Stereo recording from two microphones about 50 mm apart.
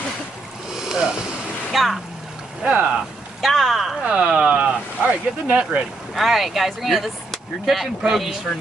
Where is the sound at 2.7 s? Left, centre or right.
Right.